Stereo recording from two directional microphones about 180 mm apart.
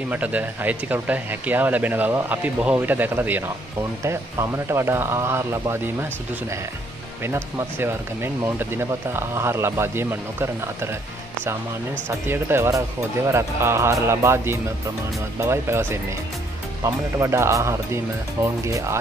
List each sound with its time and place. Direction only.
0.1 s speech: 10° right (ahead or behind)
7.2 s speech: 15° right (ahead or behind)
12.1 s speech: 15° right (ahead or behind)